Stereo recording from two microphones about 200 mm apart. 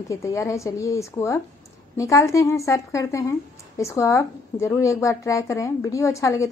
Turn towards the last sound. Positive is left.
turn(degrees=15)  # may be behind; listen again after turning